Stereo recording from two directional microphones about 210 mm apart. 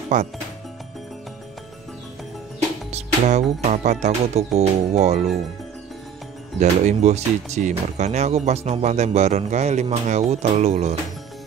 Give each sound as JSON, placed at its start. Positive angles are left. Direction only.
{"t": 0.1, "sound": "speech", "side_deg": -35}
{"t": 2.9, "sound": "speech", "side_deg": -30}
{"t": 6.6, "sound": "speech", "side_deg": -30}